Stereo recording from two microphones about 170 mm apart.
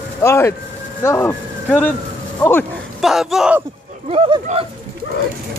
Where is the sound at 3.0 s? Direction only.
Centre (ahead or behind).